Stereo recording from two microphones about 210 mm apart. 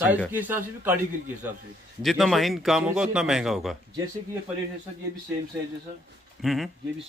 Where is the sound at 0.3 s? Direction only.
10° right (ahead or behind).